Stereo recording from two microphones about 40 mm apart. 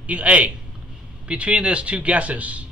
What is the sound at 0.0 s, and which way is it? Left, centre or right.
A man's voice, right.